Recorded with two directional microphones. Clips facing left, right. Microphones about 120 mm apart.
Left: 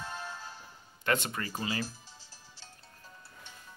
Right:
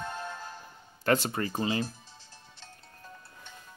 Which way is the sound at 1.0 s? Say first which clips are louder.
Right 5 dB; 35° right (ahead or behind).